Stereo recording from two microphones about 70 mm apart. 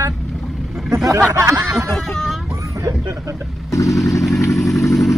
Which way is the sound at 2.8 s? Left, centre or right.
Right.